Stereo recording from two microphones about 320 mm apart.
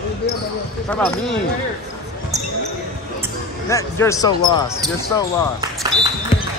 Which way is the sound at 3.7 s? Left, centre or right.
Centre.